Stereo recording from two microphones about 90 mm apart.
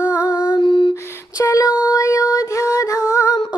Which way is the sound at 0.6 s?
70° left (ahead or behind).